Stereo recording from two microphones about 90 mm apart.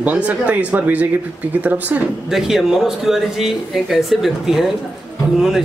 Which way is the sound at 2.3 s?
5° right (ahead or behind).